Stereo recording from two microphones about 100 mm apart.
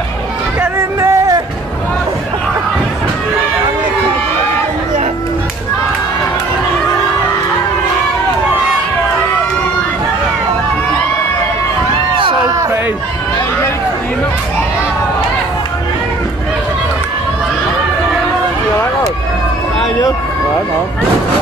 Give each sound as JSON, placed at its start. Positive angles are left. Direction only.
{"t": 0.6, "sound": "music", "side_deg": -25}